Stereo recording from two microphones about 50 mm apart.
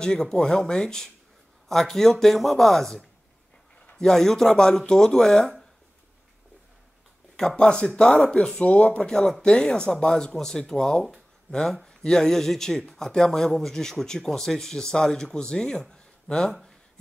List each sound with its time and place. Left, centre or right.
0.0 s speech: centre
7.3 s speech: centre
9.1 s speech: centre